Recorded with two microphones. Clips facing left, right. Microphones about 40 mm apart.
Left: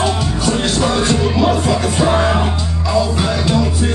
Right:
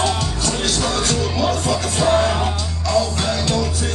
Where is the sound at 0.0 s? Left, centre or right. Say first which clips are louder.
Left 4 dB; centre.